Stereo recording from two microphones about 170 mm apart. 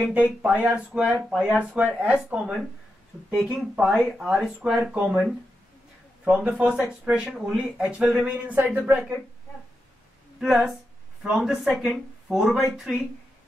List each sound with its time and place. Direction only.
0.0 s speech: 5° right (ahead or behind)
6.2 s speech: 5° right (ahead or behind)
10.4 s speech: centre (ahead or behind)